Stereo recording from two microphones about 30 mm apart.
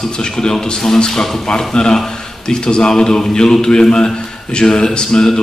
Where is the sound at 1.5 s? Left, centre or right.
Left.